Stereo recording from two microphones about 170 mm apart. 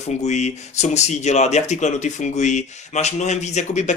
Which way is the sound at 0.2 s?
40° left (ahead or behind).